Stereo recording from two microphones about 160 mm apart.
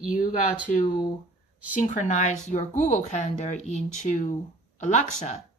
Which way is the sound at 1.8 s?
50° left (ahead or behind).